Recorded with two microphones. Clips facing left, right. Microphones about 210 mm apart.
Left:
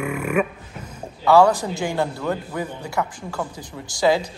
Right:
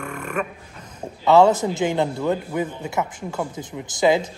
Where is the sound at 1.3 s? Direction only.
20° right (ahead or behind).